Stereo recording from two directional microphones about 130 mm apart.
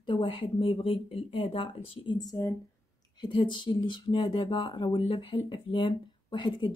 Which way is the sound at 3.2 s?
40° left (ahead or behind).